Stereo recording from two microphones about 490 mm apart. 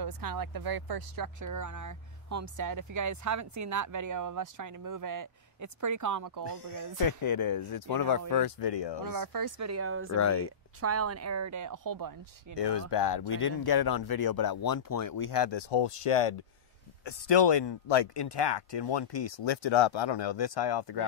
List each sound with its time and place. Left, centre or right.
0.0 s speech: right
6.8 s speech: left
9.0 s speech: right
10.1 s speech: left
10.8 s speech: right
12.5 s speech: left
17.0 s speech: left